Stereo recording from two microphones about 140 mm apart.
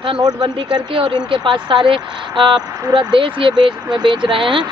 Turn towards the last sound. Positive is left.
turn(degrees=-35)  # may be behind; listen again after turning